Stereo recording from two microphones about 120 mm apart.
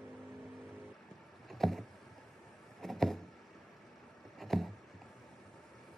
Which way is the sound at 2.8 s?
Centre (ahead or behind).